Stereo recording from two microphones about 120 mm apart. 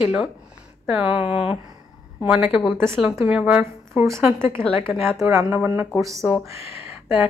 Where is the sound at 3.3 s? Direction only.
10° right (ahead or behind).